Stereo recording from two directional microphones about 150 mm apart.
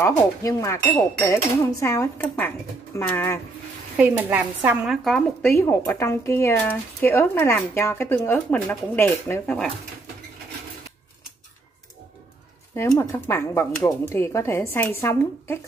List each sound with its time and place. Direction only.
0.0 s speech: 20° left (ahead or behind)
3.9 s speech: 10° right (ahead or behind)
5.0 s speech: 5° left (ahead or behind)
5.6 s speech: 15° left (ahead or behind)
12.7 s speech: 15° left (ahead or behind)